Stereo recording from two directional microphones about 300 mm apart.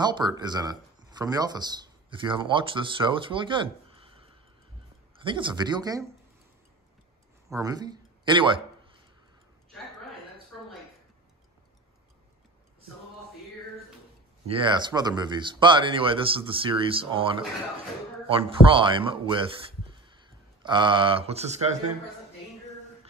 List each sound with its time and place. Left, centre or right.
0.0 s speech: centre
7.4 s speech: centre
14.4 s speech: centre